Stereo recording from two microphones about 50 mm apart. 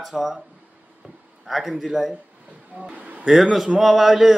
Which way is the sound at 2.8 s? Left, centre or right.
Right.